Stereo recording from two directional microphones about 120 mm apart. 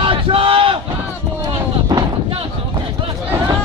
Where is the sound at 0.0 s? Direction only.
50° right (ahead or behind).